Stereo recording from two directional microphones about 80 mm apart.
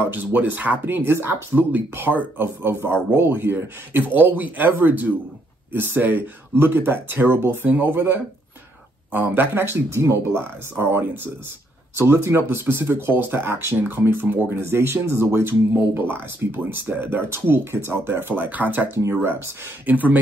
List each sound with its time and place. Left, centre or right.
0.0 s speech: right
18.9 s speech: right
19.9 s speech: right